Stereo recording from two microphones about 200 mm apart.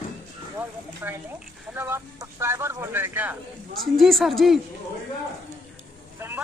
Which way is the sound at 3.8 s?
Centre (ahead or behind).